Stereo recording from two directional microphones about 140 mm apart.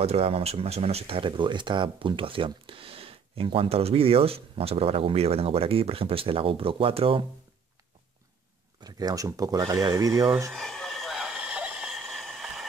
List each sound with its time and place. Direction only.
0.0 s speech: 45° right (ahead or behind)
8.8 s speech: 25° right (ahead or behind)
10.5 s a sound: 5° left (ahead or behind)